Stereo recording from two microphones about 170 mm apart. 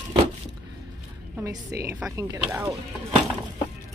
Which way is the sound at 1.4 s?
15° right (ahead or behind).